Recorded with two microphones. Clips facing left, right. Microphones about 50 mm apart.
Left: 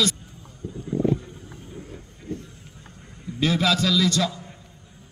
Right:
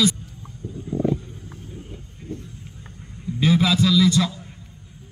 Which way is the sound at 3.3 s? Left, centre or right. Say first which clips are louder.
Right 3 dB; centre.